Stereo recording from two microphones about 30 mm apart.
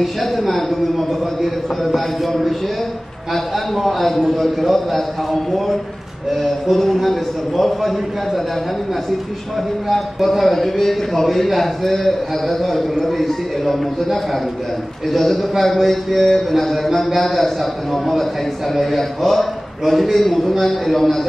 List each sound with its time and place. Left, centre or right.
0.0 s a man's voice: centre
6.3 s a man's voice: centre
9.8 s a man's voice: centre
15.0 s a man's voice: centre